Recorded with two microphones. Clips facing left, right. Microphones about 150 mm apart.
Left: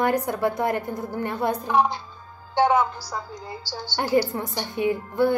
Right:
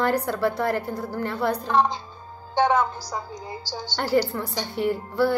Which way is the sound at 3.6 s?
15° right (ahead or behind).